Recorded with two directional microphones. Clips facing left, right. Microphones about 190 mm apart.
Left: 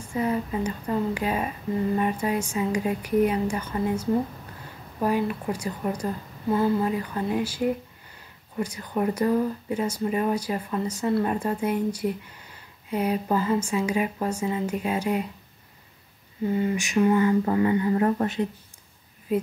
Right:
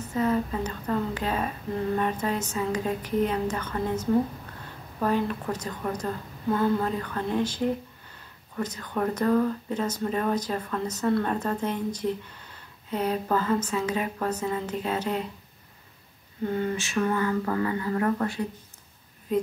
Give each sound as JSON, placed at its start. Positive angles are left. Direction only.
{"t": 0.0, "sound": "speech", "side_deg": 10}
{"t": 16.4, "sound": "speech", "side_deg": 10}
{"t": 19.3, "sound": "speech", "side_deg": 5}